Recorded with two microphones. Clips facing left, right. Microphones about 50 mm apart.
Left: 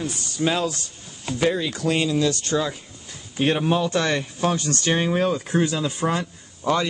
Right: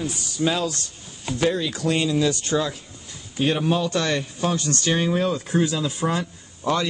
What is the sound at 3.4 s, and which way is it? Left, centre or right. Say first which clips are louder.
Speech: left 1 dB; left.